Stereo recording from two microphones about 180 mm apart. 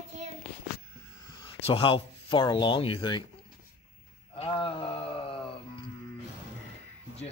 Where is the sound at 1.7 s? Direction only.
30° left (ahead or behind).